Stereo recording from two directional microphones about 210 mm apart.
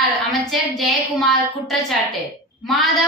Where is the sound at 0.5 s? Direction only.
Centre (ahead or behind).